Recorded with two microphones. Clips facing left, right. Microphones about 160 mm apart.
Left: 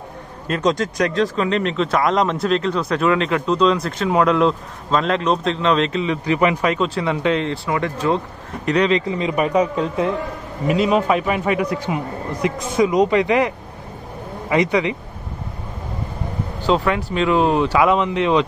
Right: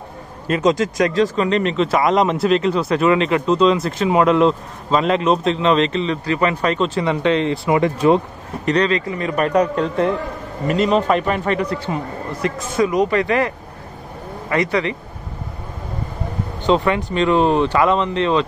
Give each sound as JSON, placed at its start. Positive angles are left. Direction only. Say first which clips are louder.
{"t": 0.5, "sound": "speech", "louder": "right 3 dB", "side_deg": 0}
{"t": 6.2, "sound": "speech", "louder": "left 2 dB", "side_deg": 15}
{"t": 7.6, "sound": "speech", "louder": "right 5 dB", "side_deg": -20}
{"t": 8.8, "sound": "speech", "louder": "left 1 dB", "side_deg": 20}
{"t": 9.4, "sound": "a man's voice", "louder": "right 2 dB", "side_deg": 5}
{"t": 14.5, "sound": "a man's voice", "louder": "left 1 dB", "side_deg": 15}
{"t": 16.6, "sound": "speech", "louder": "right 2 dB", "side_deg": 0}